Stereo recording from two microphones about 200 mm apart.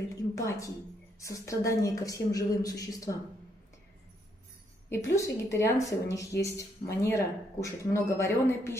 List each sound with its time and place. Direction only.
0.3 s a woman's voice: 15° left (ahead or behind)
4.8 s speech: 15° left (ahead or behind)